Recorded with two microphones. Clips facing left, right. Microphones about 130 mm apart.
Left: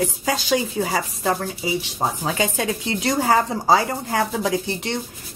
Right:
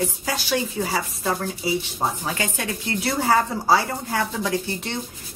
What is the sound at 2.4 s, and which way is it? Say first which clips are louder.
Speech: left 5 dB; 20° left (ahead or behind).